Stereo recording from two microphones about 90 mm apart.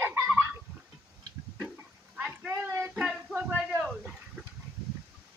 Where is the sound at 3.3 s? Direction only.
15° right (ahead or behind).